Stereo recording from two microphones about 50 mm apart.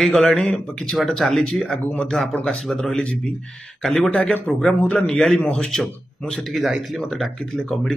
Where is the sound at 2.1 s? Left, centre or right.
Centre.